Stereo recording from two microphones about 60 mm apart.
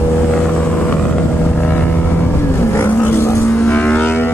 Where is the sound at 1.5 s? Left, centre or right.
Left.